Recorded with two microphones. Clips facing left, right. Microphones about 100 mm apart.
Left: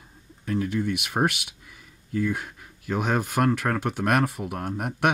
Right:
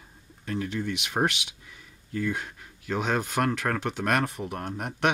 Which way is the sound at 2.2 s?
10° left (ahead or behind).